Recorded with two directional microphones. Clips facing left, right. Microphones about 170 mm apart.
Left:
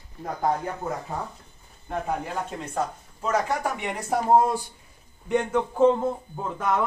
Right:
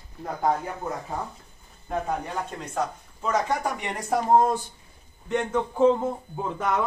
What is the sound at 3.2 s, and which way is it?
Speech, 5° left (ahead or behind).